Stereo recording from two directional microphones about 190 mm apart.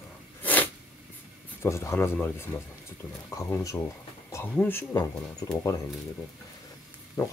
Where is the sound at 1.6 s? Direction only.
15° left (ahead or behind).